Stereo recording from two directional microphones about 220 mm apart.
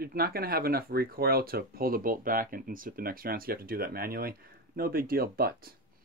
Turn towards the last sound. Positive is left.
turn(degrees=-45)  # may be behind; listen again after turning